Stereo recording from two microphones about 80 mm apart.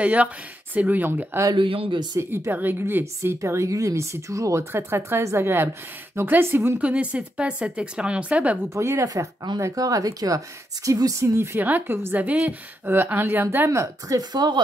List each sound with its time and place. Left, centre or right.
0.0 s a woman's voice: centre
1.5 s speech: right
2.1 s speech: right
2.5 s a woman's voice: right
3.2 s a woman's voice: right
6.8 s speech: centre
8.6 s speech: right
11.3 s a woman's voice: right
13.7 s speech: right
14.3 s speech: right